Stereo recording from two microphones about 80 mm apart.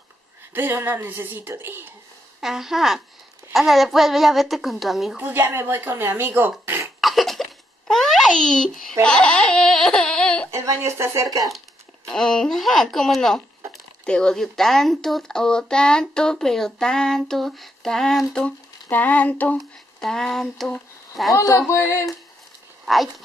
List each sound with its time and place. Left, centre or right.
0.5 s speech: right
2.4 s speech: centre
5.1 s speech: right
7.0 s a sound: centre
9.0 s speech: centre
10.5 s speech: right
12.1 s speech: centre
18.9 s a sound: left
20.0 s speech: centre
21.4 s a sound: left
22.9 s speech: centre